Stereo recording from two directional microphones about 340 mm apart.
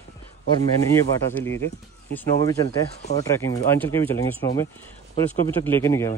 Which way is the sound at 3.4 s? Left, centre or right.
Centre.